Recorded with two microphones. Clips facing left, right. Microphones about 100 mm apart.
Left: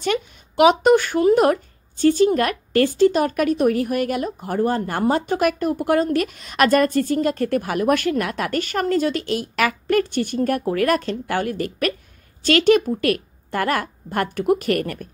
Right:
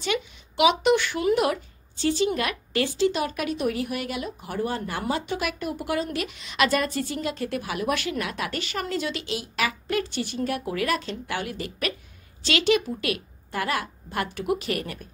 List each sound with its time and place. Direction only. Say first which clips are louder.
0.0 s speech: left 5 dB; 45° left (ahead or behind)